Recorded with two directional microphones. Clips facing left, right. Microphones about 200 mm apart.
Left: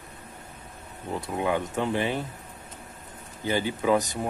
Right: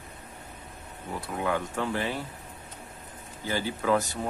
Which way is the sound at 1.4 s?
20° left (ahead or behind).